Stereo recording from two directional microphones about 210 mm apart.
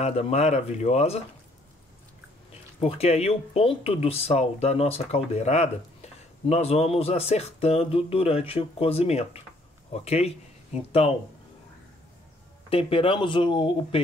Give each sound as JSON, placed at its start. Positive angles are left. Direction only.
{"t": 0.0, "sound": "speech", "side_deg": 30}
{"t": 2.8, "sound": "speech", "side_deg": 30}
{"t": 12.6, "sound": "speech", "side_deg": 25}